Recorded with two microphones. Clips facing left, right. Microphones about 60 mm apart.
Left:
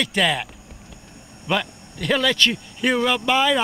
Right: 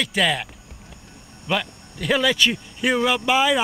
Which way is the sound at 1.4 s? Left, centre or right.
Centre.